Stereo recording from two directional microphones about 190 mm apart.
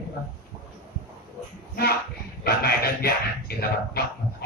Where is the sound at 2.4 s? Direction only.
55° left (ahead or behind).